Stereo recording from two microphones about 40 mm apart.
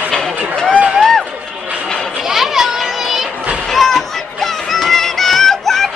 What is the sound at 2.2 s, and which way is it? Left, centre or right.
Children playing, centre.